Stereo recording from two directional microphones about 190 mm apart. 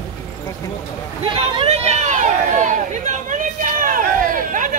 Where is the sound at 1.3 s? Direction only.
25° right (ahead or behind).